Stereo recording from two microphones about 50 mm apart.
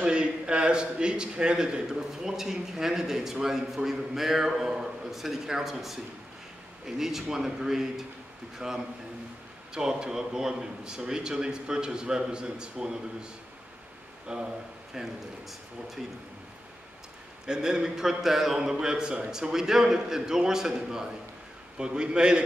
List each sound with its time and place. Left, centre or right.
0.0 s a man's voice: right; by 5.9 s centre
7.0 s a man's voice: centre
17.5 s a man's voice: centre